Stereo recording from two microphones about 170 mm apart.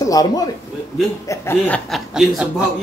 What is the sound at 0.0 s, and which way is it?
A man's voice, 20° left (ahead or behind).